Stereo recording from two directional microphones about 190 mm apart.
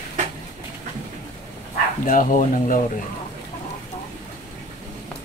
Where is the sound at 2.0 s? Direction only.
45° left (ahead or behind).